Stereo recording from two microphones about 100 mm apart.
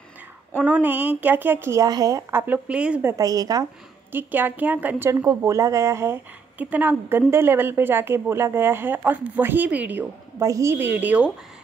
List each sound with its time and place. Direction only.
0.6 s a woman's voice: 15° right (ahead or behind)
1.9 s speech: 40° right (ahead or behind)
2.3 s speech: 20° right (ahead or behind)
3.2 s speech: 40° right (ahead or behind)
4.1 s a woman's voice: 20° right (ahead or behind)
6.6 s a woman's voice: 15° right (ahead or behind)
10.4 s a woman's voice: 30° right (ahead or behind); by 11.3 s 15° right (ahead or behind)